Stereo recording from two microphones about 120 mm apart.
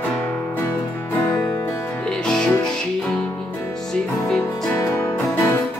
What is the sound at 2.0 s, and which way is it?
Music, 5° left (ahead or behind).